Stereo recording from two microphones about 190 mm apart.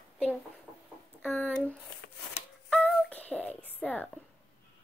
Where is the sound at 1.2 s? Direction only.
10° left (ahead or behind).